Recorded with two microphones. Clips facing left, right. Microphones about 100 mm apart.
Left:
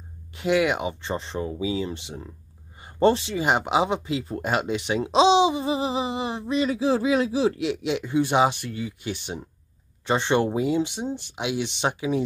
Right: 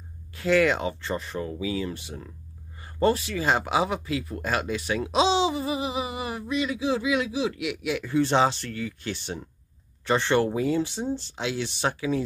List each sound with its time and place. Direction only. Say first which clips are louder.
0.3 s speech: even; 20° left (ahead or behind)